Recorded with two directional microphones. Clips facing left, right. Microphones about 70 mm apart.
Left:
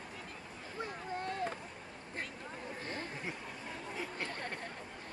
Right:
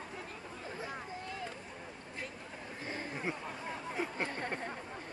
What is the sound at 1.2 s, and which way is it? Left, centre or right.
Boat, left.